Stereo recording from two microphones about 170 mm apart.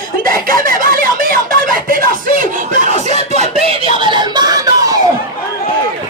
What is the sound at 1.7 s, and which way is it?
Music, 55° right (ahead or behind).